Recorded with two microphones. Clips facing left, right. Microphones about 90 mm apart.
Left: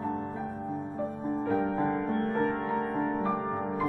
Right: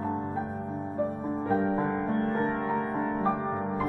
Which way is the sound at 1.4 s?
35° right (ahead or behind).